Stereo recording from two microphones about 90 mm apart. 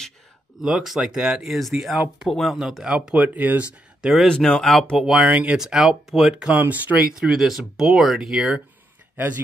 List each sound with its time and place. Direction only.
0.6 s speech: 5° right (ahead or behind)
4.0 s speech: 5° right (ahead or behind)
4.3 s speech: 10° left (ahead or behind)
6.3 s speech: 20° right (ahead or behind)
7.2 s speech: 5° right (ahead or behind)